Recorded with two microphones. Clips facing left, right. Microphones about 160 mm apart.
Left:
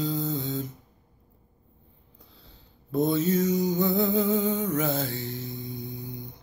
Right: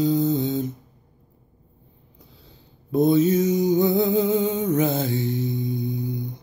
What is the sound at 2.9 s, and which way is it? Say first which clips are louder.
Music: right 6 dB; 15° right (ahead or behind).